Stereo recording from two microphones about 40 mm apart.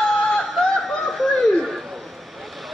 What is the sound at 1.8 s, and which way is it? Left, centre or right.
Vehicle, centre.